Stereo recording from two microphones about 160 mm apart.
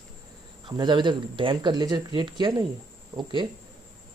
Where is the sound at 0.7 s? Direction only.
30° right (ahead or behind).